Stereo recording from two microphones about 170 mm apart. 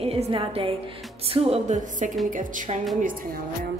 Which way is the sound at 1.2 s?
35° right (ahead or behind).